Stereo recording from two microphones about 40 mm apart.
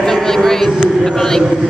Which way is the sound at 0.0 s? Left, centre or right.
Centre.